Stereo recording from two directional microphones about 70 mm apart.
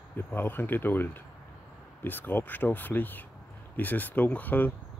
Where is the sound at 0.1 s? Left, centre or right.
Left.